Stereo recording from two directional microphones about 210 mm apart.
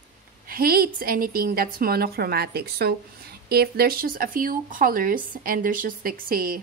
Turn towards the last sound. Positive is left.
turn(degrees=-45)  # may be behind; listen again after turning